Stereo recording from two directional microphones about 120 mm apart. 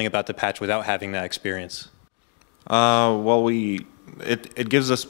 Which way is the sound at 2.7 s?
10° left (ahead or behind).